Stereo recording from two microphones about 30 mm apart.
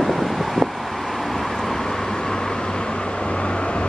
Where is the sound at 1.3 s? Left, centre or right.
Centre; by 2.6 s left.